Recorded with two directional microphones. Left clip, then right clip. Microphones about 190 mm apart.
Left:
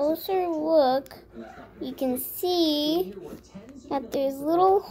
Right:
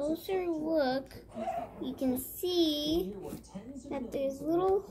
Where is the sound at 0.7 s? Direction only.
90° left.